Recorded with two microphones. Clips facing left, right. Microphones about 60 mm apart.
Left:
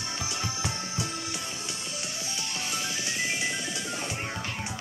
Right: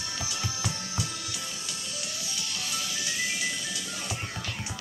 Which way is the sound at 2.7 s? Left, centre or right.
Left.